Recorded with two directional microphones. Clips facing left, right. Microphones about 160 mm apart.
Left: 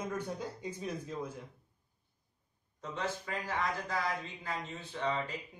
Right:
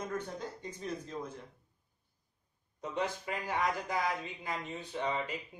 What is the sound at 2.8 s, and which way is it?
A man's voice, 15° right (ahead or behind).